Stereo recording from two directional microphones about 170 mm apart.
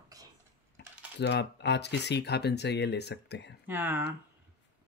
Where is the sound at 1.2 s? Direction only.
90° left.